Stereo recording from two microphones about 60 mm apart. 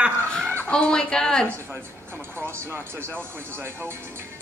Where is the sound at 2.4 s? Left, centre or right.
Right.